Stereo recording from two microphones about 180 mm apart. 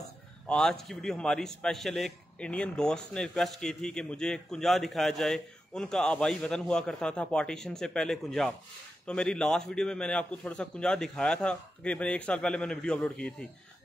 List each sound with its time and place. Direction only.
0.5 s a man's voice: 5° left (ahead or behind)